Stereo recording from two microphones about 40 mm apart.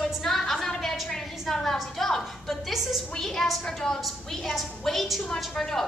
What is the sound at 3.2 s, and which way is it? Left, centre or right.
A woman's voice, centre.